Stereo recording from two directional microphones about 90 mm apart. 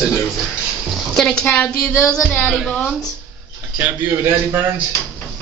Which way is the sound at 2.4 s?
Centre (ahead or behind).